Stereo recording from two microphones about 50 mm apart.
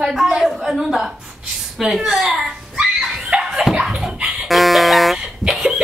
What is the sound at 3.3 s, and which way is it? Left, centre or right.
Dog, right.